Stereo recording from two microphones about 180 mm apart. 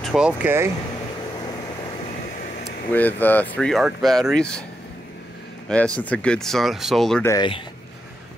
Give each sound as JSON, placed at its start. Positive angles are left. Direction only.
{"t": 0.0, "sound": "speech", "side_deg": -5}
{"t": 2.2, "sound": "a sound", "side_deg": 45}
{"t": 2.9, "sound": "speech", "side_deg": 10}
{"t": 5.7, "sound": "speech", "side_deg": 5}
{"t": 7.2, "sound": "speech", "side_deg": 25}